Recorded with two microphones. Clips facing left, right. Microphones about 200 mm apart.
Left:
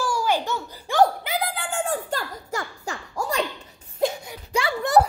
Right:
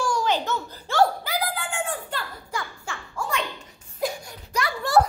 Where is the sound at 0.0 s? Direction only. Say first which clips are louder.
Even; 5° left (ahead or behind); by 3.4 s 40° left (ahead or behind).